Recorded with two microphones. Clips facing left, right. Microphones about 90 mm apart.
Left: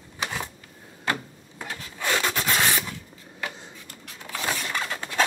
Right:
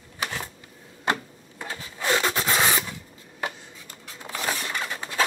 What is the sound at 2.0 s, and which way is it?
Rub, 20° right (ahead or behind).